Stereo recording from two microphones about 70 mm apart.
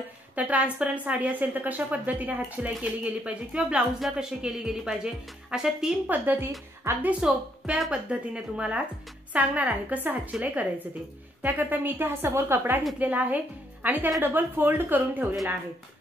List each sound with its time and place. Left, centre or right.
0.4 s a woman's voice: right
6.0 s a woman's voice: right
7.0 s a woman's voice: centre
13.0 s a woman's voice: right